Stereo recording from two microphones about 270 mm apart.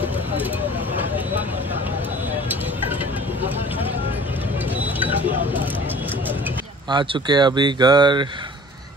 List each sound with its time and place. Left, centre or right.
6.9 s speech: centre